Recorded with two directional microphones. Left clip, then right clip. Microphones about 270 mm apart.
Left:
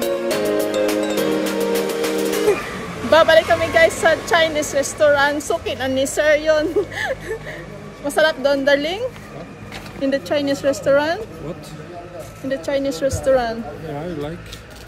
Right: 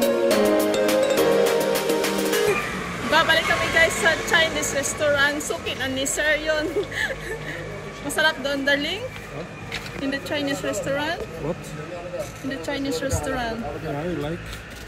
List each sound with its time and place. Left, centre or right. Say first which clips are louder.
0.0 s music: right 1 dB; centre
3.1 s speech: left 7 dB; left
10.0 s speech: left 8 dB; left
12.4 s a woman's voice: left 9 dB; centre